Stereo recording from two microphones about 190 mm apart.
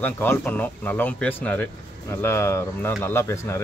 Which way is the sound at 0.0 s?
10° left (ahead or behind).